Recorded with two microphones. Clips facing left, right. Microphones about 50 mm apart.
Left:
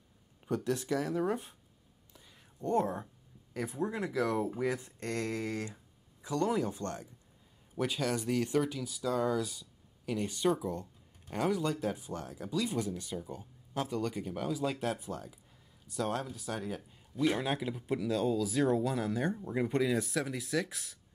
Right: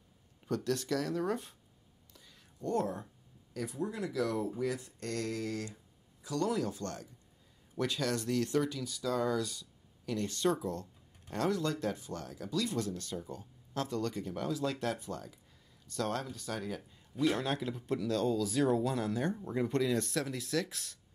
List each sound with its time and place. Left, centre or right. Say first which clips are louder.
0.7 s speech: left 1 dB; centre
2.1 s a sound: left 3 dB; centre
3.5 s speech: left 2 dB; left
7.7 s speech: left 1 dB; centre